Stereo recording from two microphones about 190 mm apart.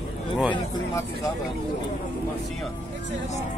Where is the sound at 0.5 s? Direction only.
15° left (ahead or behind).